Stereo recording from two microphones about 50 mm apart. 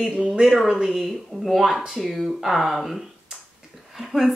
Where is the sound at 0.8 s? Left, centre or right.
Centre.